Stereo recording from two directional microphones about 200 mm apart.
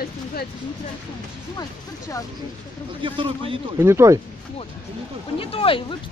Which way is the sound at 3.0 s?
25° right (ahead or behind).